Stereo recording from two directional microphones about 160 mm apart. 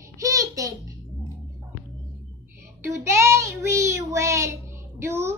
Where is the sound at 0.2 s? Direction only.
20° right (ahead or behind).